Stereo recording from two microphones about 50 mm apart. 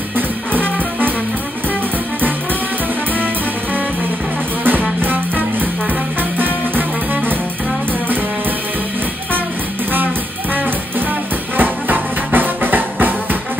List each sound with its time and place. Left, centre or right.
4.6 s music: right
6.3 s music: right
11.5 s music: right